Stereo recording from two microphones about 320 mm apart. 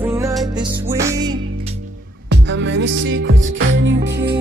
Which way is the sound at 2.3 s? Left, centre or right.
Right.